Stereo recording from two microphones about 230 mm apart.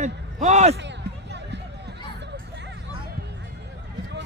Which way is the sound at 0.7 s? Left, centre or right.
Right.